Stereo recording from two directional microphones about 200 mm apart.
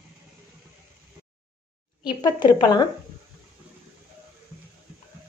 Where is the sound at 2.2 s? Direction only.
20° left (ahead or behind).